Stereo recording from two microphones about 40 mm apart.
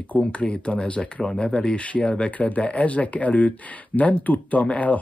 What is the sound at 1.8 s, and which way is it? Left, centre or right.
Speech, left.